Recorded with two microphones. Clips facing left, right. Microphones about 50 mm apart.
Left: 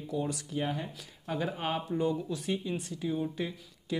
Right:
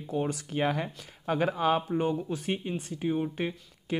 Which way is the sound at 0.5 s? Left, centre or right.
Right.